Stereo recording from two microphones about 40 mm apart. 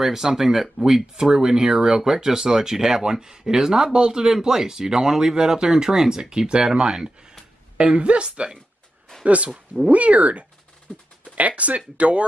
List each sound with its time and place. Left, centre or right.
0.0 s speech: centre
7.7 s speech: right